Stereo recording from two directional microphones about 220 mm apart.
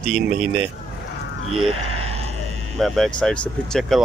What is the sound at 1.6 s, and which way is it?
Speech, 25° right (ahead or behind).